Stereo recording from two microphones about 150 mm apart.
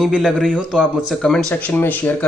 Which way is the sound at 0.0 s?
Centre (ahead or behind).